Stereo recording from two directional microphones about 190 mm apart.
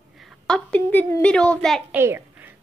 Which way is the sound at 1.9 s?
10° right (ahead or behind).